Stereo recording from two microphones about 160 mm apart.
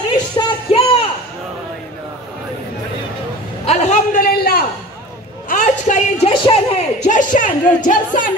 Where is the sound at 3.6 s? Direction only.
45° left (ahead or behind).